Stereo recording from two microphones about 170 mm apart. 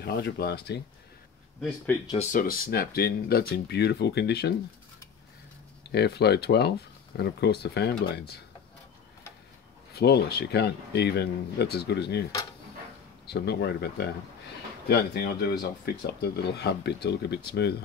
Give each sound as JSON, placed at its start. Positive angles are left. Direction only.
{"t": 0.0, "sound": "speech", "side_deg": 70}
{"t": 2.3, "sound": "speech", "side_deg": 60}
{"t": 5.9, "sound": "speech", "side_deg": 75}
{"t": 9.9, "sound": "speech", "side_deg": 70}
{"t": 13.3, "sound": "speech", "side_deg": 75}